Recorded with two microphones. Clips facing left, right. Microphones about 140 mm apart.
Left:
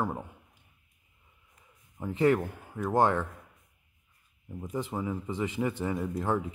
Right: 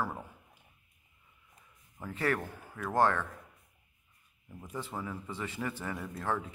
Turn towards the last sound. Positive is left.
turn(degrees=15)  # may be behind; listen again after turning